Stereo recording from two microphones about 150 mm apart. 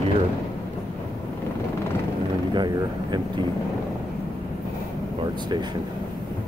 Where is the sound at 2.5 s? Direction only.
30° right (ahead or behind).